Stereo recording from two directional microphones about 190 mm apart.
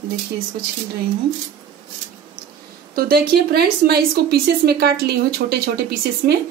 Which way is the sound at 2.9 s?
55° right (ahead or behind).